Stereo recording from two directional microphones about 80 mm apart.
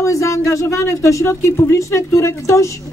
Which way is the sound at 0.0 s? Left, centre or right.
Left.